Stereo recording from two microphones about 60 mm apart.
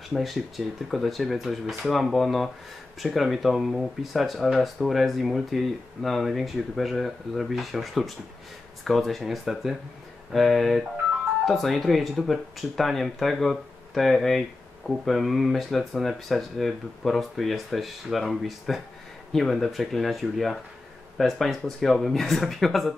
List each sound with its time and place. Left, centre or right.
0.1 s speech: centre